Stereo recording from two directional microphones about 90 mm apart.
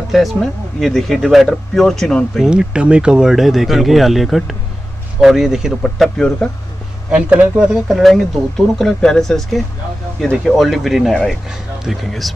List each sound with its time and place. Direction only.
0.1 s speech: centre (ahead or behind)
2.5 s speech: 10° right (ahead or behind); by 6.5 s 5° left (ahead or behind)
7.1 s speech: 15° right (ahead or behind)
7.9 s speech: centre (ahead or behind)